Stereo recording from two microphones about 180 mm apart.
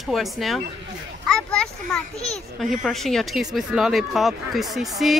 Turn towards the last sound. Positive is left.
turn(degrees=0)  # may be behind; listen again after turning